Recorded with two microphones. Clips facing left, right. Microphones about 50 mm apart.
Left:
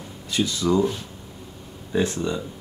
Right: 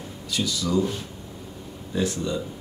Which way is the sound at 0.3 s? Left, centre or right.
Left.